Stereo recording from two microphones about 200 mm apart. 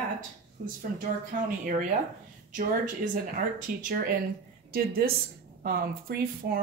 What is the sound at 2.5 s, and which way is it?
Speech, 40° right (ahead or behind).